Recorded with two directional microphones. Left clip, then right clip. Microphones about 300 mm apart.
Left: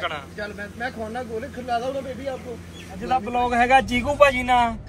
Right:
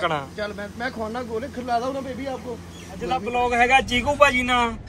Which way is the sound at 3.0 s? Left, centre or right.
Centre.